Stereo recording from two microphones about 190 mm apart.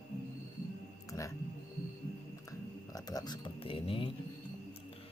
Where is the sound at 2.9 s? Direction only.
20° left (ahead or behind).